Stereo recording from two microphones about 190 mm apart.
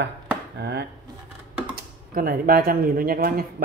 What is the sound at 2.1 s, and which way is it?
Speech, 50° right (ahead or behind).